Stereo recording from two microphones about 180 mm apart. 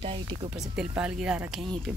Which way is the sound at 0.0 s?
30° right (ahead or behind).